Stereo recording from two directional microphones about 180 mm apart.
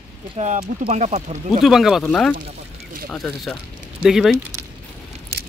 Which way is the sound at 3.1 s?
5° left (ahead or behind).